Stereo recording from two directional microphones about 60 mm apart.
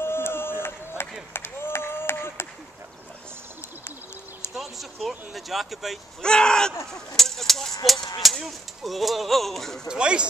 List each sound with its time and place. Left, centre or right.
0.0 s a sound: left
4.6 s speech: centre
6.2 s speech: centre
6.9 s a sound: centre
8.2 s speech: centre
9.8 s speech: centre